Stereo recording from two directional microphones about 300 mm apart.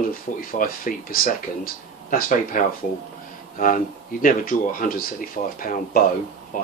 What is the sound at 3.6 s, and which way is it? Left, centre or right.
Speech, left.